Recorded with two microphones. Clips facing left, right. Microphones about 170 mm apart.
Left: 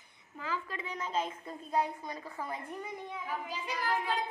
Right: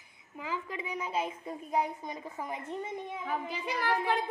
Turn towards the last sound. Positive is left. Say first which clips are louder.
# right 3 dB
turn(degrees=-60)  # may be behind; listen again after turning